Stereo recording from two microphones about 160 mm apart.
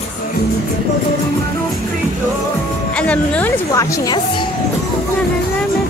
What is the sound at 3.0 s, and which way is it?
Speech, 10° left (ahead or behind).